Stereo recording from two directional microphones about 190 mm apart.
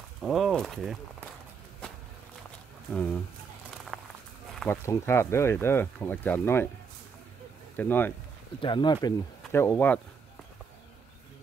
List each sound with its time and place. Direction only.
0.2 s speech: centre (ahead or behind)
2.9 s speech: 5° left (ahead or behind)
3.9 s a sound: centre (ahead or behind)
4.6 s speech: 10° left (ahead or behind)
7.7 s speech: 10° left (ahead or behind)
8.5 s speech: 25° left (ahead or behind)